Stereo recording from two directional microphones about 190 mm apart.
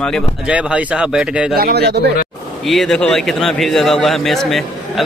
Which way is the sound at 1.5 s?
55° right (ahead or behind).